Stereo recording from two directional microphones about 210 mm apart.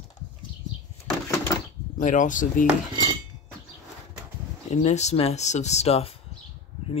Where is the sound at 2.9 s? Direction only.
20° right (ahead or behind).